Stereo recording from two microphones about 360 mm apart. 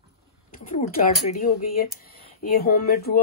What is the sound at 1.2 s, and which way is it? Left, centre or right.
Speech, left.